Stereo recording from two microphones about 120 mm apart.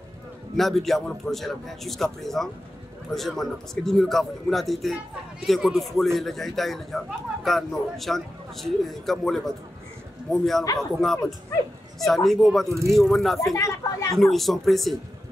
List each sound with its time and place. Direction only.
0.6 s a man's voice: centre (ahead or behind)
13.6 s speech: 25° left (ahead or behind)
14.1 s a man's voice: centre (ahead or behind)